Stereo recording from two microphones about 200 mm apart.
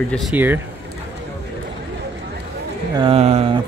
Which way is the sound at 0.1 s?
5° right (ahead or behind).